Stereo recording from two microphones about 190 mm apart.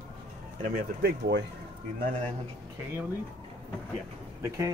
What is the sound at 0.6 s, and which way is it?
Speech, 55° right (ahead or behind).